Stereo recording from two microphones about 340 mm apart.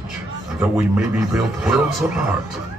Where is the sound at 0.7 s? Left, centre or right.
Centre.